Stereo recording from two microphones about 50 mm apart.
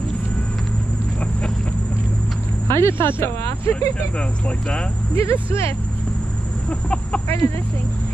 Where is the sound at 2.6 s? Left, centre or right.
Left.